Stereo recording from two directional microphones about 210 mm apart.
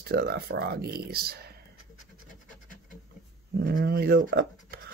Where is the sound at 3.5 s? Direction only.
50° right (ahead or behind).